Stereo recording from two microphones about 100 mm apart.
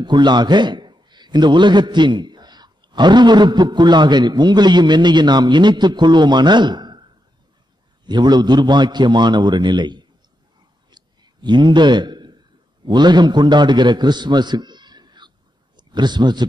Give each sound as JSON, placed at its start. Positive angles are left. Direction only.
{"t": 0.0, "sound": "a man's voice", "side_deg": -50}
{"t": 10.9, "sound": "a sound", "side_deg": -45}
{"t": 12.8, "sound": "a man's voice", "side_deg": -45}